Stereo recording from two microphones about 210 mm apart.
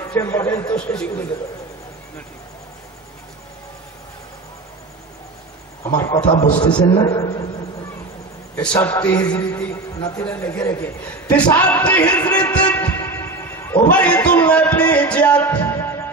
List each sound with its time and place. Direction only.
0.0 s a man's voice: 10° left (ahead or behind)
5.9 s a man's voice: 15° left (ahead or behind)
8.5 s a man's voice: 10° left (ahead or behind)
12.5 s a sound: 20° left (ahead or behind)